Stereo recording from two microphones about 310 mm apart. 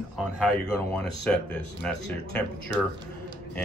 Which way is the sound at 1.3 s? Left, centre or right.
Centre.